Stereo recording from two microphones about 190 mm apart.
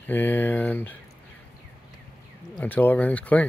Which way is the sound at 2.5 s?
10° left (ahead or behind).